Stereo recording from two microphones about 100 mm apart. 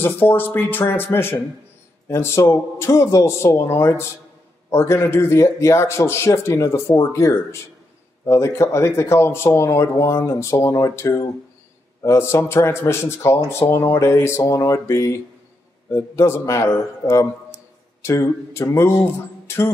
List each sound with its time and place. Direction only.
0.0 s speech: 20° left (ahead or behind)